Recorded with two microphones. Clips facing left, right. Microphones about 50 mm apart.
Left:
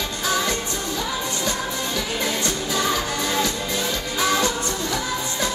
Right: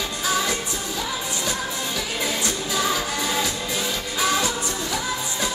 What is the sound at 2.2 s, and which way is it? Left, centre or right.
Music, centre.